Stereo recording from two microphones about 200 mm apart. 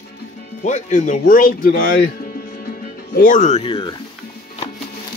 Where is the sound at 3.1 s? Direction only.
40° left (ahead or behind); by 3.9 s 25° left (ahead or behind).